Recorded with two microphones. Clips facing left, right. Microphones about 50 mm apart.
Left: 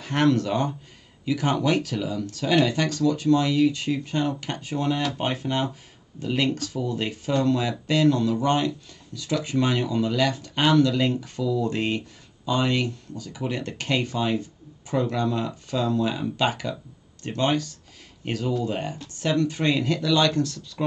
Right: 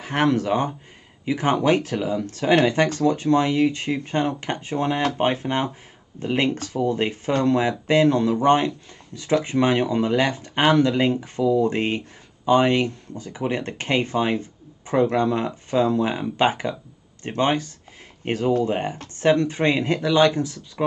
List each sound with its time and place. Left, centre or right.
0.0 s speech: centre
1.2 s speech: right